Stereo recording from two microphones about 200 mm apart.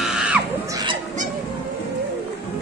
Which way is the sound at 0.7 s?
20° right (ahead or behind).